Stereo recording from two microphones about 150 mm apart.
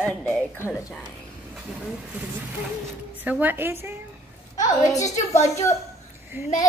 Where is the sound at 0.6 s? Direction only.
15° left (ahead or behind).